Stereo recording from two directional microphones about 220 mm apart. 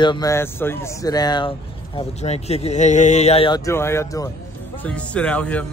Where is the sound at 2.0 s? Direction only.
30° left (ahead or behind).